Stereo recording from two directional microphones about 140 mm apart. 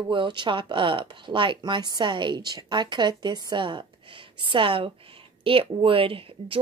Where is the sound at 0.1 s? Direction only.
35° right (ahead or behind).